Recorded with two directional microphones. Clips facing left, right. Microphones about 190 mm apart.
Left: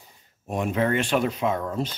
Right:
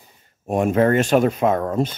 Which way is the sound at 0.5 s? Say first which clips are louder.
Right 7 dB; 50° right (ahead or behind).